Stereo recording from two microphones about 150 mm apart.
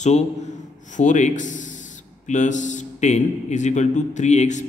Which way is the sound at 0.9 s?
55° left (ahead or behind).